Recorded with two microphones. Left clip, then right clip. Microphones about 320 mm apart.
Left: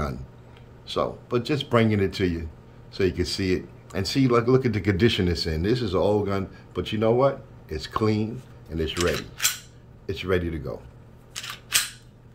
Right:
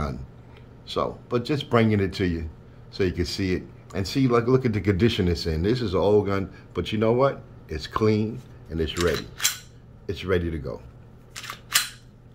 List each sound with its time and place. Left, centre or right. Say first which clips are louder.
0.8 s speech: even; centre
11.4 s single-lens reflex camera: left 1 dB; centre